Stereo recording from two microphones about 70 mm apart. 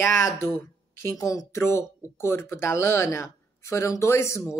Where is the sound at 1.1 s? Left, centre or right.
Left.